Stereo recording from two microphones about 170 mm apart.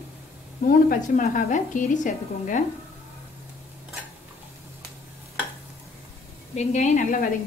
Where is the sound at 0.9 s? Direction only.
50° left (ahead or behind).